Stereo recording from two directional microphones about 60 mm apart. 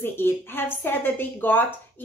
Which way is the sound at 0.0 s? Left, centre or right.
Left.